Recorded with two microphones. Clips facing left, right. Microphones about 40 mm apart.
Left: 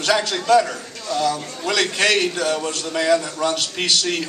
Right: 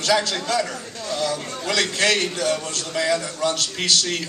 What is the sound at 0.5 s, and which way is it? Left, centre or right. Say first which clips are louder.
A man's voice: left 7 dB; left.